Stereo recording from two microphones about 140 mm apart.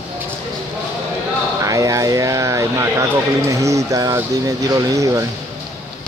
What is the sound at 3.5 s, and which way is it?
Music, 20° right (ahead or behind).